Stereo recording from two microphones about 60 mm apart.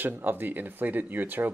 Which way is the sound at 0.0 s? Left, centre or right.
Right.